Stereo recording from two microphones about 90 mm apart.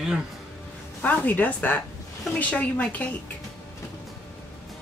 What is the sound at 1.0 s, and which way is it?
A woman's voice, 20° left (ahead or behind).